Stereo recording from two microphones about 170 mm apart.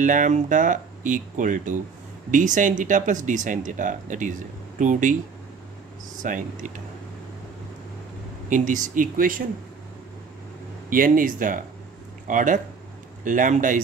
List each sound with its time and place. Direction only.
0.0 s speech: 50° right (ahead or behind)
6.2 s speech: 50° right (ahead or behind)
8.5 s speech: 50° right (ahead or behind)
10.9 s speech: 55° right (ahead or behind)